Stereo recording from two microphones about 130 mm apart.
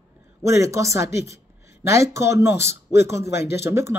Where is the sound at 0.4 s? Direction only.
20° right (ahead or behind).